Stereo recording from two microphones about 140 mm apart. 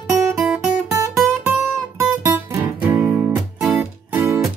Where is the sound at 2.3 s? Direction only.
15° right (ahead or behind).